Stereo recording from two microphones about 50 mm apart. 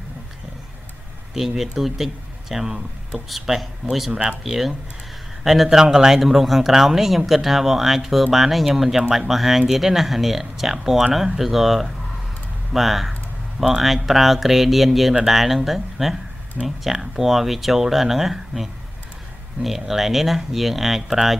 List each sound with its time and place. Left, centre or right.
1.6 s speech: centre
4.1 s speech: centre
4.4 s speech: centre